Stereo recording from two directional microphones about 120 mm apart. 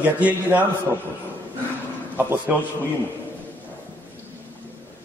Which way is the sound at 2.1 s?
15° right (ahead or behind).